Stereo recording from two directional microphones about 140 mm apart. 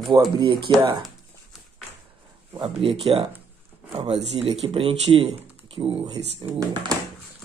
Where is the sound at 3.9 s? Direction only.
40° right (ahead or behind).